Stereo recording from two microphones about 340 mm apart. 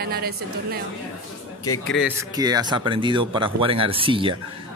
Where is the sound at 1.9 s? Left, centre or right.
Centre.